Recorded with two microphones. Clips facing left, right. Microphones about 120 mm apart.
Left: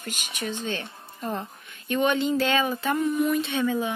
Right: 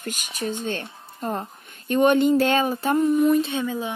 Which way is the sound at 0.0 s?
45° right (ahead or behind).